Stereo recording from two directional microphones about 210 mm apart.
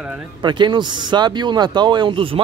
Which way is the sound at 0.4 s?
20° right (ahead or behind).